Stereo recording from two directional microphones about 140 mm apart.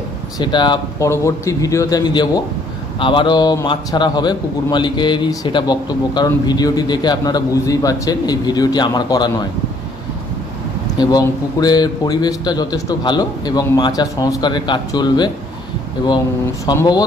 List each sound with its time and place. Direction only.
0.4 s a man's voice: 35° left (ahead or behind)
0.9 s a man's voice: 20° left (ahead or behind)
11.0 s a man's voice: 30° left (ahead or behind)
16.6 s a man's voice: 30° left (ahead or behind)